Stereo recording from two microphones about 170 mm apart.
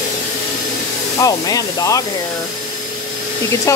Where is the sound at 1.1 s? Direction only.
20° left (ahead or behind).